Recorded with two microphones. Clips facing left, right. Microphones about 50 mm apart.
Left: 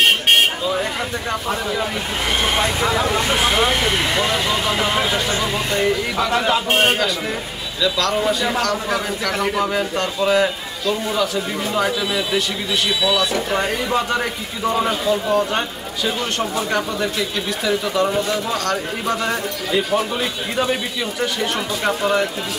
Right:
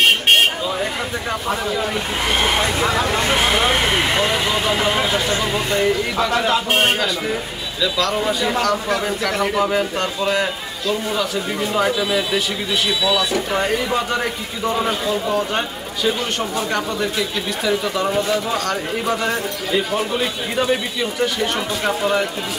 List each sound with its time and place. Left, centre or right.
0.0 s vehicle: centre
1.5 s a man's voice: centre